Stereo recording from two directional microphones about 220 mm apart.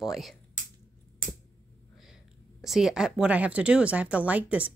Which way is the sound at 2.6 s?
Centre (ahead or behind).